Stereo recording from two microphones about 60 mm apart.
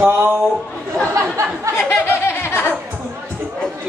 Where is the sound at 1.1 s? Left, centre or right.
Right.